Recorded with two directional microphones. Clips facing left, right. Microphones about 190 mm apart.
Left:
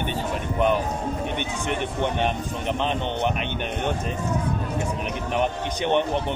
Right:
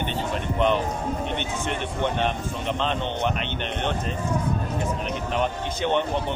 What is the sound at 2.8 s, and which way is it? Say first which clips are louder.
Speech: left 1 dB; 15° left (ahead or behind).